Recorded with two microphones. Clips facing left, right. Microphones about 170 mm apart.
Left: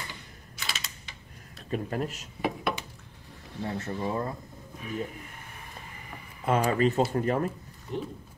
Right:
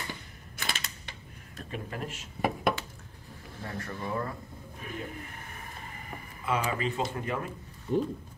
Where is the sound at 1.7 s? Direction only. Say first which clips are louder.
Left 7 dB; 40° left (ahead or behind).